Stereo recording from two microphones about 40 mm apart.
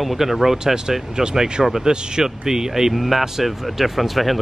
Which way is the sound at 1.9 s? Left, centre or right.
Right.